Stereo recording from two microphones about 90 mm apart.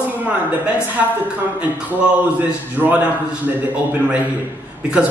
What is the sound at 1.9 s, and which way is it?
A man's voice, 20° right (ahead or behind).